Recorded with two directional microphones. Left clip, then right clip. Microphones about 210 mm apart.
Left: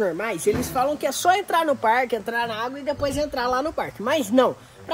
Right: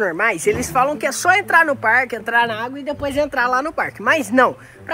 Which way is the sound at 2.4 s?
45° right (ahead or behind).